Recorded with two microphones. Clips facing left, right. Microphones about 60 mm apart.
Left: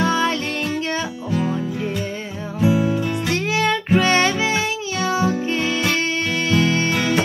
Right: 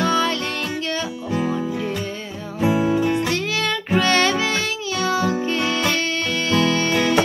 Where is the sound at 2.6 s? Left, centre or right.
Right.